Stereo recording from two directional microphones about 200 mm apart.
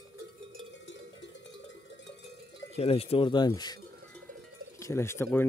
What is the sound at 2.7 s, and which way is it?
Speech, 30° left (ahead or behind).